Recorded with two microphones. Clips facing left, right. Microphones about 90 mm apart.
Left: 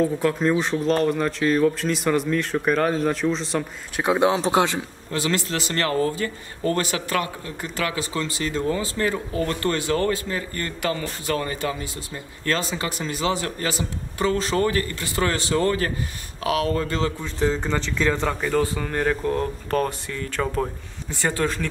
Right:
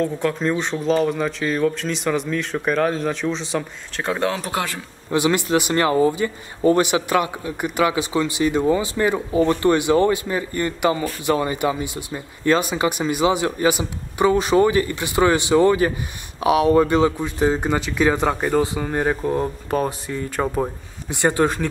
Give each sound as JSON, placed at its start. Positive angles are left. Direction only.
{"t": 0.0, "sound": "speech", "side_deg": 0}
{"t": 3.9, "sound": "speech", "side_deg": 15}
{"t": 5.1, "sound": "speech", "side_deg": -15}